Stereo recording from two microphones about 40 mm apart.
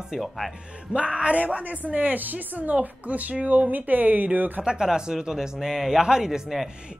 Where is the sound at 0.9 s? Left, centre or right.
Right.